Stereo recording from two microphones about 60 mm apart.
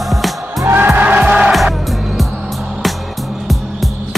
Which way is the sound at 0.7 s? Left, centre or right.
Right.